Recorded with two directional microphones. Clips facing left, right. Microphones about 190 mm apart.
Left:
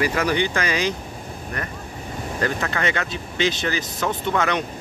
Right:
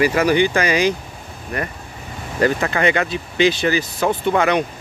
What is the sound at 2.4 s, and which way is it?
Speech, 10° right (ahead or behind).